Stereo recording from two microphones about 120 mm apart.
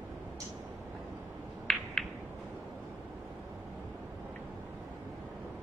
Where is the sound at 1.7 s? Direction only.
5° left (ahead or behind).